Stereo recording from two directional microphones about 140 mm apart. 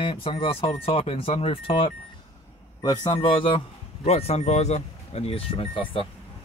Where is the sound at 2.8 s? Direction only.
30° left (ahead or behind).